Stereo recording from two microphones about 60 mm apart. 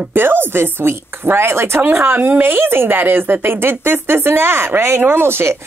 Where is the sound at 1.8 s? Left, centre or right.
Right.